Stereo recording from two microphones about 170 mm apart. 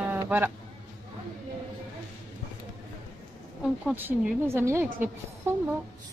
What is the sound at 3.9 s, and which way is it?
Speech, 10° right (ahead or behind).